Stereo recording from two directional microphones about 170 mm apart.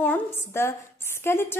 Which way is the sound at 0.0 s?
10° left (ahead or behind).